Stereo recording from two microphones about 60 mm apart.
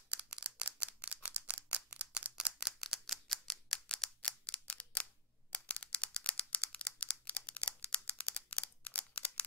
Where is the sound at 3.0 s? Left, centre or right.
Centre.